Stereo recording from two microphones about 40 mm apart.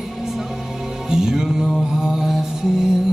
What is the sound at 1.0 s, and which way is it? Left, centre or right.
Music, centre.